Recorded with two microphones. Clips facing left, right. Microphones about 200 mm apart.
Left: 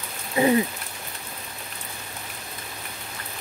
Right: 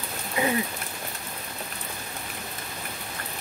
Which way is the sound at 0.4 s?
30° left (ahead or behind).